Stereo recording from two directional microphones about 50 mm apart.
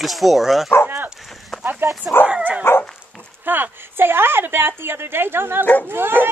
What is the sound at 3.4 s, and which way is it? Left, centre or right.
A woman's voice, right.